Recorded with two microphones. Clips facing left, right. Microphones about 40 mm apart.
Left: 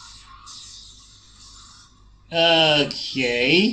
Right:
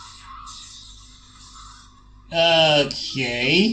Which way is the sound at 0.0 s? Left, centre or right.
Right.